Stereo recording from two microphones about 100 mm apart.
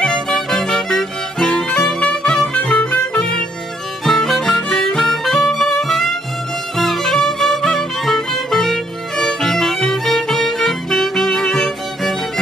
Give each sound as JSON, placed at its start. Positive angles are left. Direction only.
{"t": 0.0, "sound": "music", "side_deg": 5}